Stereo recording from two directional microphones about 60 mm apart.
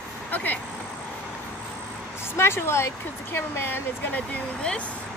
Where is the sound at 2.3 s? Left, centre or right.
Left.